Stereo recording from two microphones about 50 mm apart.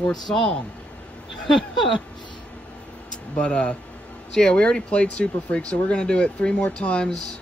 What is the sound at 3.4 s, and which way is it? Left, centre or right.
Speech, left.